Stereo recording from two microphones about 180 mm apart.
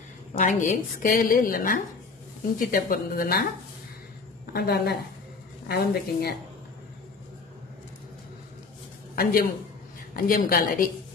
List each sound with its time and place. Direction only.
0.3 s a woman's voice: 45° left (ahead or behind)
4.6 s a woman's voice: 65° left (ahead or behind)
9.1 s a man's voice: 55° left (ahead or behind)